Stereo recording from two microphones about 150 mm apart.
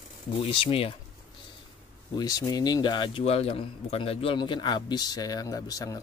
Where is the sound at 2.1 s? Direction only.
25° left (ahead or behind).